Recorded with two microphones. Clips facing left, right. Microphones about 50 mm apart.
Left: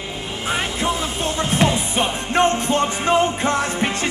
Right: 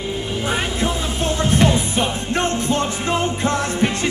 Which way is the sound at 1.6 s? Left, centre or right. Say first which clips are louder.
Left 1 dB; left.